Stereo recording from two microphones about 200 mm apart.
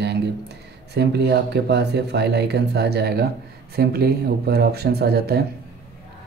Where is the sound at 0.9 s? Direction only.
55° right (ahead or behind).